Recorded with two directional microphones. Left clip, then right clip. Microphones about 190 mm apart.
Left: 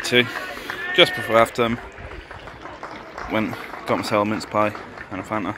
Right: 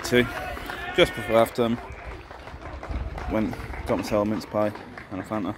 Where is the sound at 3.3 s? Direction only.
Centre (ahead or behind).